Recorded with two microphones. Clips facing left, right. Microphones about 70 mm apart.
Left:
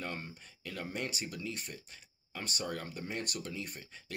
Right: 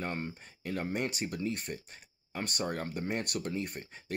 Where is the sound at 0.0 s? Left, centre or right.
Right.